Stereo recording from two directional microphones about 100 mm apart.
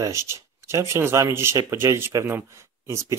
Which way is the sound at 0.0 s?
30° right (ahead or behind).